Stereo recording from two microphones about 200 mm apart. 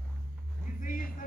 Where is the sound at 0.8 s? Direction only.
40° left (ahead or behind).